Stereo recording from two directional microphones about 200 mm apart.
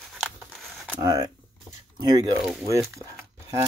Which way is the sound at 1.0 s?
20° right (ahead or behind).